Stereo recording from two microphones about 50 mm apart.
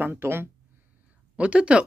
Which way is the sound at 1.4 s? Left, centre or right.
Right.